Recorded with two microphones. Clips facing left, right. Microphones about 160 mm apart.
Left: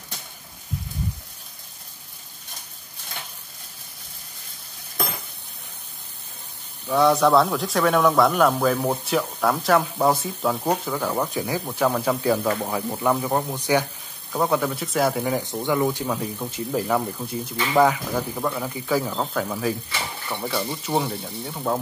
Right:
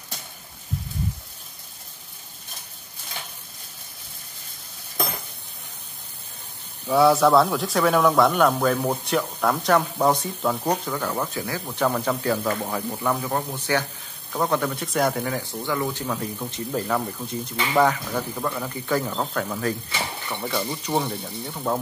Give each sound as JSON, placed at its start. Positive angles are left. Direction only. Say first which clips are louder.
{"t": 6.9, "sound": "speech", "louder": "right 1 dB", "side_deg": -5}
{"t": 15.2, "sound": "speech", "louder": "left 4 dB", "side_deg": 20}